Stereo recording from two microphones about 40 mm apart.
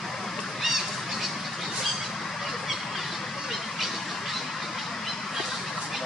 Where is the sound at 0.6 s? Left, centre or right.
Centre.